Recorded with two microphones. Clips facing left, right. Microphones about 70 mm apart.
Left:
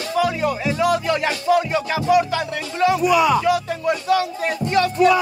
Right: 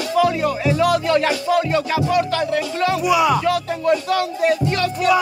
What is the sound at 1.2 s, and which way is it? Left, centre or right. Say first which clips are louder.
Music: even; centre.